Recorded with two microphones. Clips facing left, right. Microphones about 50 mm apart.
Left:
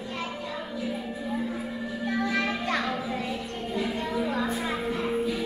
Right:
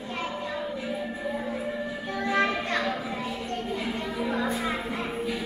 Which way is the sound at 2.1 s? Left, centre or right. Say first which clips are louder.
Right 3 dB; right.